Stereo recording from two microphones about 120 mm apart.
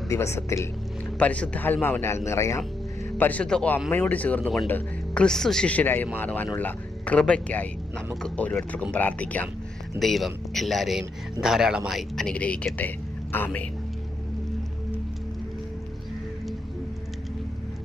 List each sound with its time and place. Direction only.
0.1 s a man's voice: 25° left (ahead or behind)
1.2 s a man's voice: 10° left (ahead or behind)
3.2 s speech: 10° left (ahead or behind)
9.9 s a man's voice: centre (ahead or behind)